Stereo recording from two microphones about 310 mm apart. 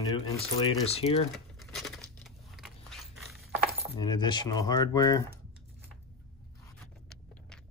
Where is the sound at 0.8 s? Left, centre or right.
Centre.